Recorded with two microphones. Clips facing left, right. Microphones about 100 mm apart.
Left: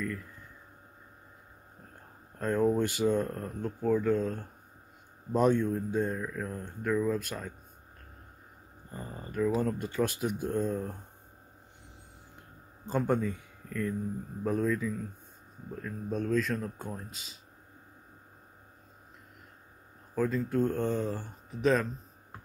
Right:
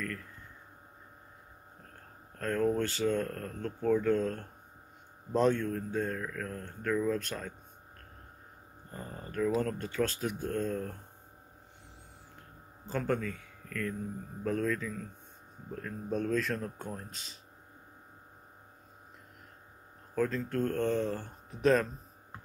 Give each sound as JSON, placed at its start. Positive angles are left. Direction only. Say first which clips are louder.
{"t": 2.3, "sound": "speech", "louder": "left 3 dB", "side_deg": 15}
{"t": 8.9, "sound": "speech", "louder": "left 2 dB", "side_deg": 10}
{"t": 12.8, "sound": "speech", "louder": "left 4 dB", "side_deg": 15}
{"t": 20.2, "sound": "speech", "louder": "left 2 dB", "side_deg": 10}